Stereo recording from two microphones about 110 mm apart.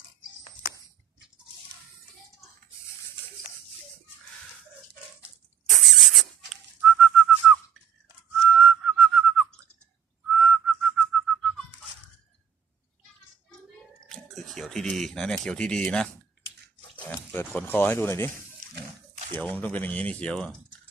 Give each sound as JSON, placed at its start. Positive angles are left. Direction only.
{"t": 5.7, "sound": "whistling", "side_deg": 0}
{"t": 14.0, "sound": "a sound", "side_deg": 0}
{"t": 17.3, "sound": "speech", "side_deg": 15}
{"t": 19.3, "sound": "speech", "side_deg": 15}